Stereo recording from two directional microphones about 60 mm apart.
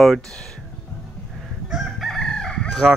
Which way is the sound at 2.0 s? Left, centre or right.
Centre.